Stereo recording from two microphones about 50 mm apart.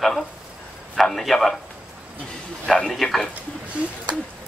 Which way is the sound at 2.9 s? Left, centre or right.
Centre.